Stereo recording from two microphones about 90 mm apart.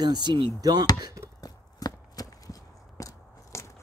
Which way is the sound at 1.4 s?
45° left (ahead or behind).